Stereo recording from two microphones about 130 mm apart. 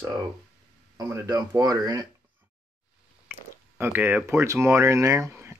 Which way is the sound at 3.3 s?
15° right (ahead or behind).